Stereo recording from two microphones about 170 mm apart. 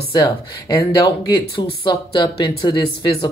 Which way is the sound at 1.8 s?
25° left (ahead or behind).